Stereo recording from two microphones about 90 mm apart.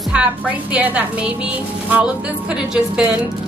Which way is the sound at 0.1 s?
15° right (ahead or behind).